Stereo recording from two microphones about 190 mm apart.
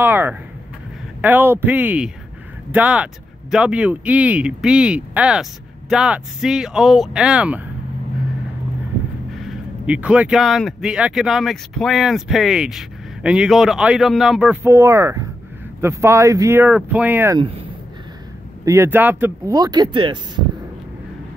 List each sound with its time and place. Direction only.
0.0 s speech: 10° right (ahead or behind)
9.4 s speech: 5° right (ahead or behind)
18.7 s speech: 10° right (ahead or behind)